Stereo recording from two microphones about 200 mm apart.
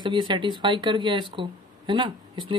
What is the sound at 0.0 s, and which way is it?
Speech, 25° right (ahead or behind).